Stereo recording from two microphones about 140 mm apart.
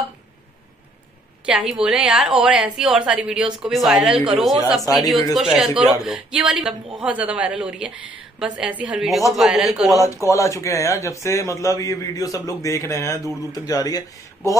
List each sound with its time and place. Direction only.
1.4 s a woman's voice: 5° right (ahead or behind)
10.3 s a man's voice: 20° left (ahead or behind)